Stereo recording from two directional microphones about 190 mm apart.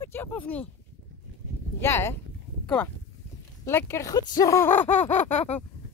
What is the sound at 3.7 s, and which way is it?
Speech, 15° left (ahead or behind).